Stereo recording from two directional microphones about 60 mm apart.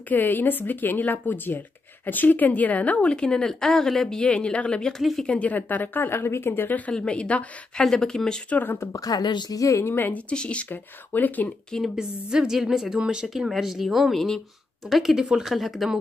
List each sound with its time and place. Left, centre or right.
0.1 s a woman's voice: left; by 4.2 s centre
4.2 s a woman's voice: centre
5.3 s speech: left
6.9 s a woman's voice: centre
8.5 s a woman's voice: left
8.9 s speech: left
9.8 s speech: left
10.1 s a woman's voice: centre
10.7 s speech: left
11.8 s a woman's voice: centre